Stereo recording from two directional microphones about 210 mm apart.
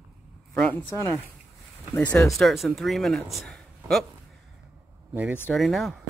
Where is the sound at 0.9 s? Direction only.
20° right (ahead or behind).